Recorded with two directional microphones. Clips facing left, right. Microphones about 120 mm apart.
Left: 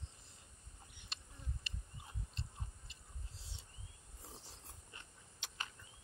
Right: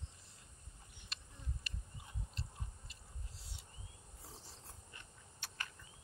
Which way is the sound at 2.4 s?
25° left (ahead or behind).